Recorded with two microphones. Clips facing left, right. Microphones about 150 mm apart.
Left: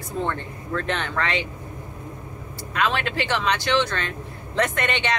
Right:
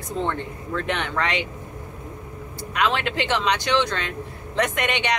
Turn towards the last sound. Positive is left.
turn(degrees=-15)  # may be behind; listen again after turning